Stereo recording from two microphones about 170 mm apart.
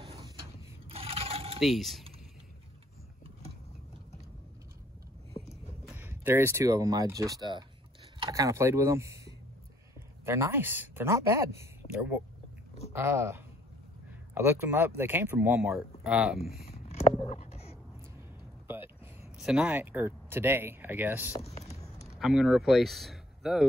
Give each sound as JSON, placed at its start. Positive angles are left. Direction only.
{"t": 0.8, "sound": "scrape", "side_deg": -35}
{"t": 1.6, "sound": "speech", "side_deg": 0}
{"t": 5.9, "sound": "speech", "side_deg": -10}
{"t": 12.9, "sound": "speech", "side_deg": -15}
{"t": 16.6, "sound": "a sound", "side_deg": 40}
{"t": 19.3, "sound": "speech", "side_deg": -5}
{"t": 21.4, "sound": "a sound", "side_deg": 40}
{"t": 22.1, "sound": "speech", "side_deg": -5}